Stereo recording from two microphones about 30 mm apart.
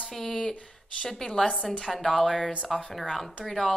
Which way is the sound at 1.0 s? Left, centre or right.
Centre.